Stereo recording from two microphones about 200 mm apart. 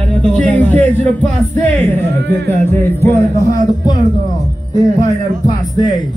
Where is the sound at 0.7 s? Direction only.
10° left (ahead or behind).